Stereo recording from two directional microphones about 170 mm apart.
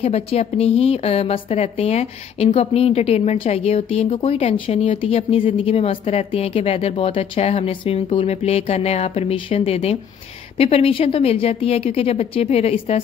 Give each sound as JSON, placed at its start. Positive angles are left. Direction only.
{"t": 0.0, "sound": "a woman's voice", "side_deg": 35}